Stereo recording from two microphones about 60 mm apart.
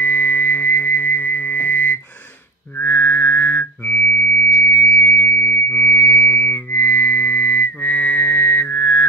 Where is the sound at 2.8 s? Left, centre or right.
Left.